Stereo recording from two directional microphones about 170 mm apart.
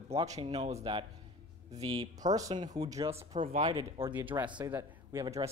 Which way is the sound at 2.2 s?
20° right (ahead or behind).